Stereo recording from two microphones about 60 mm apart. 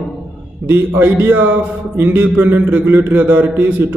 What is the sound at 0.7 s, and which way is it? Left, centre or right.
A man's voice, right.